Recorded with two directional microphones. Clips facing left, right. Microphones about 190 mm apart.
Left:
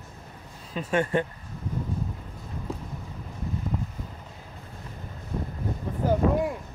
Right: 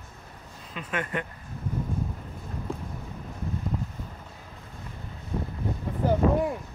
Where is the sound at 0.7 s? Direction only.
30° left (ahead or behind).